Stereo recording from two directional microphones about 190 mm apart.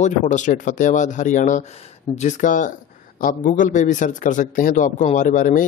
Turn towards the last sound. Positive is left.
turn(degrees=40)  # may be behind; listen again after turning